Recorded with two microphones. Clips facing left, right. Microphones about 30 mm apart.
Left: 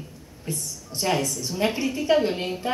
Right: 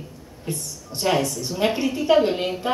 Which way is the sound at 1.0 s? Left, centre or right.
Centre.